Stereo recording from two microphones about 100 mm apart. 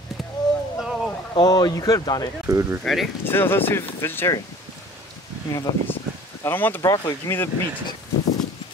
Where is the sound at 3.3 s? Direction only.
20° left (ahead or behind).